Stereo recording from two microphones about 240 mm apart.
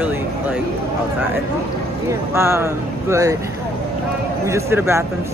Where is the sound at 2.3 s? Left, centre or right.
Centre.